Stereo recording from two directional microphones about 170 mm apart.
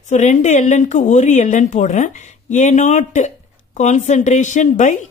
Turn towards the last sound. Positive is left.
turn(degrees=45)  # may be behind; listen again after turning